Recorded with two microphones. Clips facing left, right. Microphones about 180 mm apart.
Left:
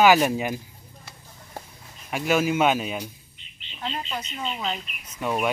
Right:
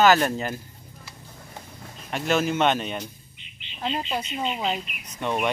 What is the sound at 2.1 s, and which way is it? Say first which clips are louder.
Speech: left 1 dB; 5° left (ahead or behind).